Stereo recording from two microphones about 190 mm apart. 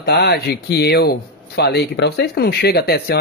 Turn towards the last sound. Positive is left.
turn(degrees=55)  # may be behind; listen again after turning